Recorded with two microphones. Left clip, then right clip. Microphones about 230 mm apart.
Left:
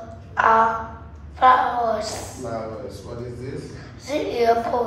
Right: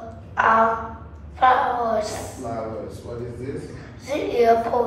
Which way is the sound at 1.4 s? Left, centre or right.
Left.